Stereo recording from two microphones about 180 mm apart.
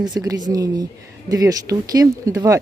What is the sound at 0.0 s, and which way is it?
Speech, 20° right (ahead or behind).